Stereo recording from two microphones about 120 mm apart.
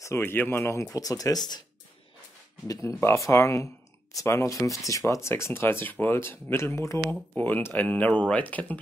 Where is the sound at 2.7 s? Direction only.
25° left (ahead or behind).